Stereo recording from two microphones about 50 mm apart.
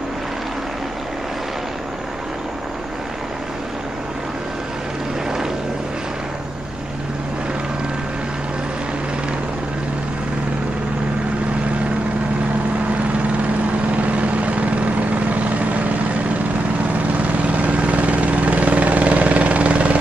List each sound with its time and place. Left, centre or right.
14.0 s vehicle: right
17.5 s vehicle: right